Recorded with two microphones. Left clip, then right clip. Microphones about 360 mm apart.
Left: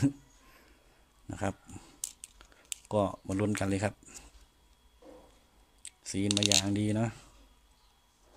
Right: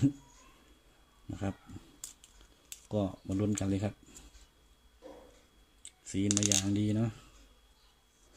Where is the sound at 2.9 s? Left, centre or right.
Left.